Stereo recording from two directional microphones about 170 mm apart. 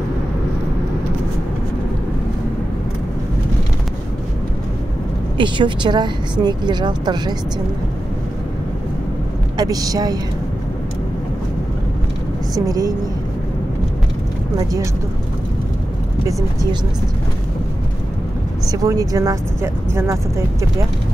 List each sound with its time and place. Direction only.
5.4 s a woman's voice: 25° right (ahead or behind)
9.6 s a woman's voice: 20° right (ahead or behind)
12.5 s a woman's voice: 20° right (ahead or behind)
14.6 s a woman's voice: 20° right (ahead or behind)
18.7 s speech: 20° right (ahead or behind)